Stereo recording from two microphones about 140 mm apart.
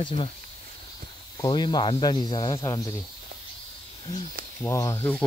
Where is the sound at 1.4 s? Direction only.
30° left (ahead or behind).